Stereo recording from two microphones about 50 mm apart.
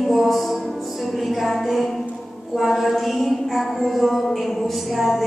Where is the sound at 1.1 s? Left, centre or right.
Centre.